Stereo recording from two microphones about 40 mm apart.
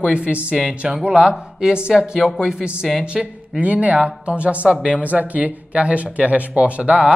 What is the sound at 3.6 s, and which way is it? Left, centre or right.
Speech, right.